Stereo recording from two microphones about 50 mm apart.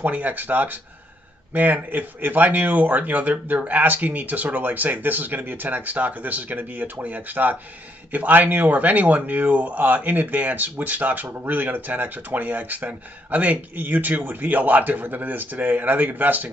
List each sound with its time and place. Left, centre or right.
0.0 s speech: right